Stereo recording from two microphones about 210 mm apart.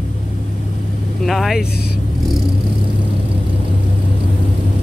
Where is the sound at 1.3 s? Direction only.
Centre (ahead or behind).